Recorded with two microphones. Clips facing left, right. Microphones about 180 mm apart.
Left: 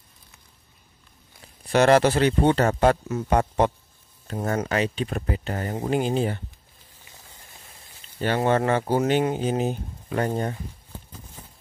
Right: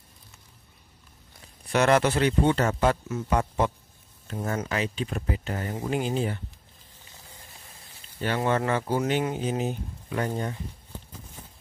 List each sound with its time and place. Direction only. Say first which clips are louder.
1.7 s speech: left 4 dB; 35° left (ahead or behind)
2.8 s speech: left 4 dB; 55° left (ahead or behind); by 5.8 s 40° left (ahead or behind)
5.8 s speech: left 4 dB; 30° left (ahead or behind)
8.2 s speech: left 4 dB; 30° left (ahead or behind)
9.5 s speech: left 4 dB; 50° left (ahead or behind)